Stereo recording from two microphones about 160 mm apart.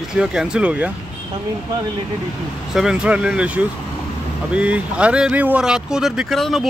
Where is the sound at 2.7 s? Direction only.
5° right (ahead or behind).